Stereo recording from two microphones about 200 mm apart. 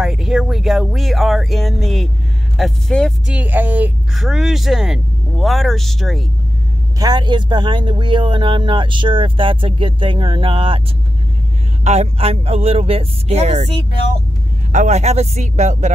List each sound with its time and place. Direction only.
0.0 s speech: 5° right (ahead or behind)
3.3 s speech: 10° right (ahead or behind)
7.0 s speech: 20° right (ahead or behind)
11.8 s speech: 35° right (ahead or behind)
14.7 s speech: 35° right (ahead or behind)